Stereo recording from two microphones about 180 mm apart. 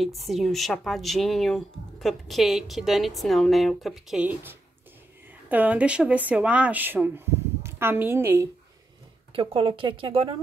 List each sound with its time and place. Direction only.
0.0 s speech: centre (ahead or behind)
9.3 s speech: 30° right (ahead or behind)